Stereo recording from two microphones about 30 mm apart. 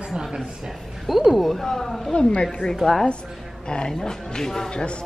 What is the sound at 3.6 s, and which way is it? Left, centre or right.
Speech, left.